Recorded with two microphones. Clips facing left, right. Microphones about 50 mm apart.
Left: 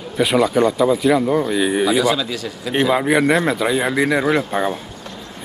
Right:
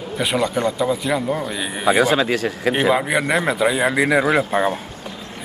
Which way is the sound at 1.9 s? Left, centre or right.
Right.